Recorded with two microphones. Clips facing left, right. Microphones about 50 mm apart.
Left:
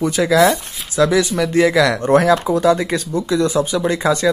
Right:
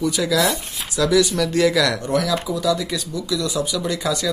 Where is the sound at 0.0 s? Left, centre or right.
Left.